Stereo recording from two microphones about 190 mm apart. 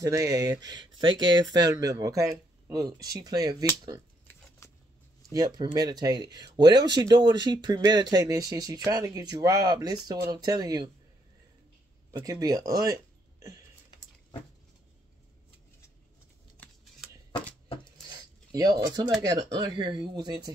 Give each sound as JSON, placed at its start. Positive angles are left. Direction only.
{"t": 0.0, "sound": "speech", "side_deg": -15}
{"t": 4.6, "sound": "a sound", "side_deg": 15}
{"t": 5.3, "sound": "speech", "side_deg": -20}
{"t": 12.1, "sound": "speech", "side_deg": -20}
{"t": 17.3, "sound": "shuffling cards", "side_deg": 25}
{"t": 18.5, "sound": "speech", "side_deg": -20}